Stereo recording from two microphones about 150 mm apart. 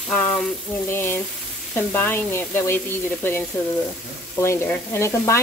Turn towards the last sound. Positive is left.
turn(degrees=20)  # may be behind; listen again after turning